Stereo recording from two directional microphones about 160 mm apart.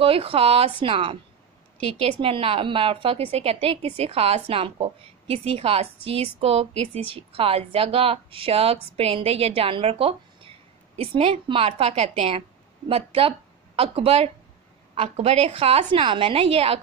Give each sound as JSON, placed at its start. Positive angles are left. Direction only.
{"t": 0.0, "sound": "a woman's voice", "side_deg": -35}